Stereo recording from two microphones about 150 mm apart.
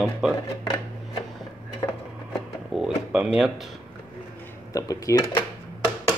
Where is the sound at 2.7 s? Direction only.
5° right (ahead or behind).